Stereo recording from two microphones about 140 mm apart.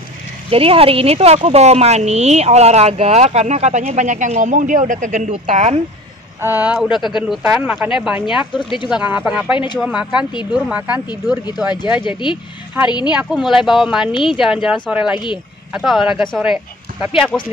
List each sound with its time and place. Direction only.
0.5 s a woman's voice: 40° right (ahead or behind)
6.4 s speech: 10° right (ahead or behind)
8.5 s speech: 35° left (ahead or behind)
8.8 s speech: 10° right (ahead or behind)
11.1 s speech: 30° left (ahead or behind)
13.1 s speech: 5° right (ahead or behind)
14.1 s speech: 35° left (ahead or behind)
14.4 s speech: 5° right (ahead or behind)